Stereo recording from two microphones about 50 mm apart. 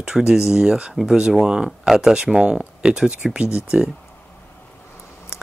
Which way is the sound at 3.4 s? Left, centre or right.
Left.